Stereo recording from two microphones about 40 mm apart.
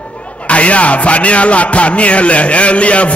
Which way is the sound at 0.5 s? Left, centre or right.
Left.